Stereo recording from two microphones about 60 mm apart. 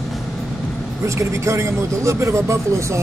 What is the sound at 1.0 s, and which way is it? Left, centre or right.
Speech, right.